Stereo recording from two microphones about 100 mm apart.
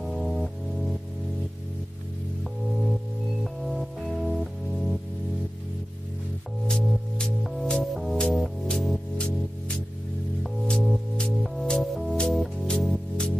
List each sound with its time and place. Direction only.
0.0 s music: centre (ahead or behind)
3.6 s music: centre (ahead or behind)
6.7 s music: 5° left (ahead or behind)